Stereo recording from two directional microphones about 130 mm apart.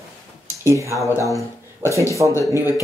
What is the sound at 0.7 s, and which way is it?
Speech, 25° right (ahead or behind).